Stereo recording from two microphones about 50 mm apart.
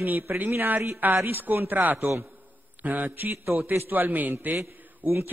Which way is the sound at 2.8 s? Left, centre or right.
Right.